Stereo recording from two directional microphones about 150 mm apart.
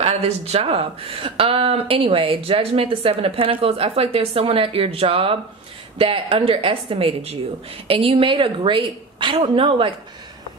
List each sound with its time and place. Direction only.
0.0 s speech: 45° right (ahead or behind)